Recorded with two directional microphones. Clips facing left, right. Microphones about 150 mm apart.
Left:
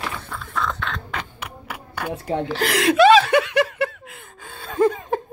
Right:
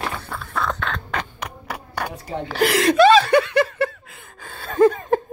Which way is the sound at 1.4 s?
35° right (ahead or behind).